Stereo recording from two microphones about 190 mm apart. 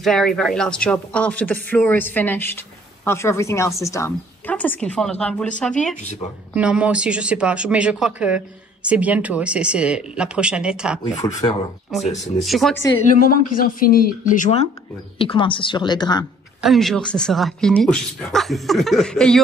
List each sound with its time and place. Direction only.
0.0 s speech: centre (ahead or behind)
6.5 s speech: 5° right (ahead or behind)
11.1 s speech: 35° left (ahead or behind)
11.9 s speech: centre (ahead or behind)
13.0 s speech: 45° left (ahead or behind)
15.1 s speech: 25° left (ahead or behind)
16.6 s speech: centre (ahead or behind)